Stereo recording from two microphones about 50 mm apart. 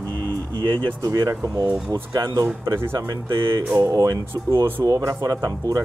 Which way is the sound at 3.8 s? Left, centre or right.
Right.